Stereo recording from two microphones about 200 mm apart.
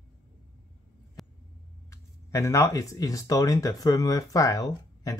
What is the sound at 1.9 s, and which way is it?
Speech, 15° left (ahead or behind).